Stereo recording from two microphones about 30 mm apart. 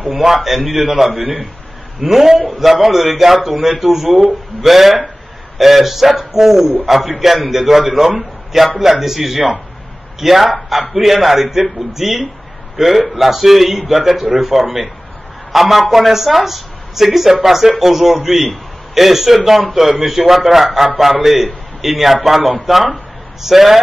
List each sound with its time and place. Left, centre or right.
0.1 s a man's voice: centre
1.2 s a man's voice: right
2.0 s a man's voice: centre